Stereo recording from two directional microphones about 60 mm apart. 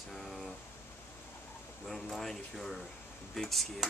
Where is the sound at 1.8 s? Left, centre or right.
Centre.